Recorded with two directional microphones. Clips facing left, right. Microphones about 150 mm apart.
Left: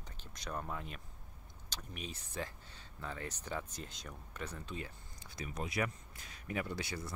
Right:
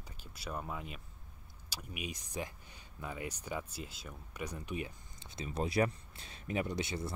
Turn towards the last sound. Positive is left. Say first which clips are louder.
# right 4 dB
turn(degrees=-25)  # may be behind; listen again after turning